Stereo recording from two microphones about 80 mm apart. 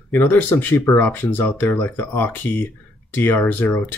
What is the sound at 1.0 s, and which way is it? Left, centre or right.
Speech, left.